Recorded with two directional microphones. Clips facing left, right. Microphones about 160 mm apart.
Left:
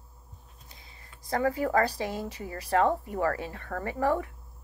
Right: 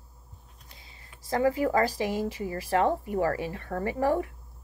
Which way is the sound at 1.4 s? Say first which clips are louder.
Right 2 dB; 25° right (ahead or behind).